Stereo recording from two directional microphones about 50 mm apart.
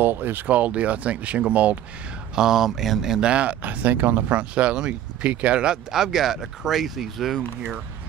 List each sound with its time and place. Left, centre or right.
0.0 s speech: right
0.5 s speech: right
2.3 s speech: centre
3.3 s speech: right